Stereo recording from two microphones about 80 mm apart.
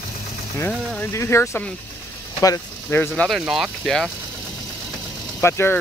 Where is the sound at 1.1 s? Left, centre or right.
Left.